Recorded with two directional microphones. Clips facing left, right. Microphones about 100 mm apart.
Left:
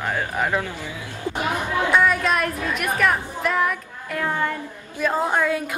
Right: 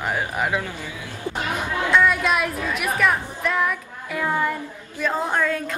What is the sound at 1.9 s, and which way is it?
A woman's voice, centre (ahead or behind).